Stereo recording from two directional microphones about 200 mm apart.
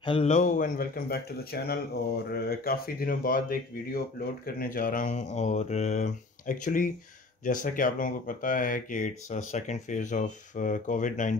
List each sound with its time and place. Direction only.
0.0 s a man's voice: 25° left (ahead or behind)
0.3 s speech: 40° left (ahead or behind)